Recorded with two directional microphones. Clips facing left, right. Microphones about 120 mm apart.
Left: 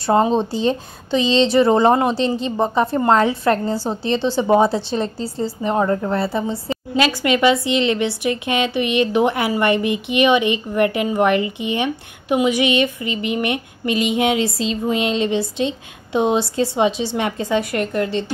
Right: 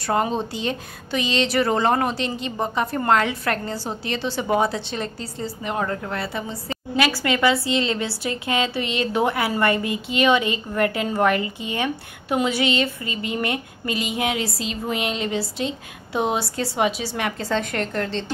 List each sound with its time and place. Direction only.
0.0 s a woman's voice: 25° left (ahead or behind)
7.0 s a woman's voice: 20° left (ahead or behind)